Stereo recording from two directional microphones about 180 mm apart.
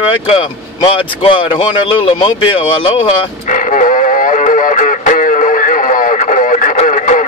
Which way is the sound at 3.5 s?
45° left (ahead or behind).